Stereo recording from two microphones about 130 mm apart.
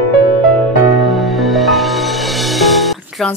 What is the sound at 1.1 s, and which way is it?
Music, centre (ahead or behind).